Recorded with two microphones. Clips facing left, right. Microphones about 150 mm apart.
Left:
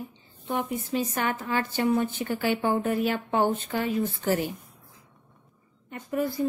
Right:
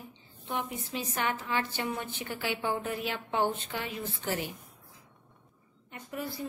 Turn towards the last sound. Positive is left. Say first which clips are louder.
# left 10 dB
turn(degrees=50)  # may be behind; listen again after turning